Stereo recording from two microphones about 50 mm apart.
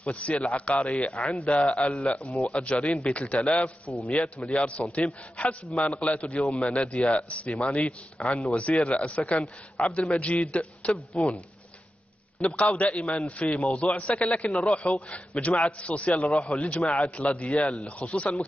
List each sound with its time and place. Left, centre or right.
0.0 s a man's voice: left
6.0 s a man's voice: left
12.4 s a man's voice: left
12.6 s a man's voice: left